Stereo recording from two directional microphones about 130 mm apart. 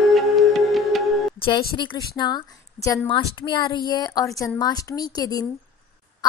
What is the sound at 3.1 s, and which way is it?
A woman's voice, 40° left (ahead or behind).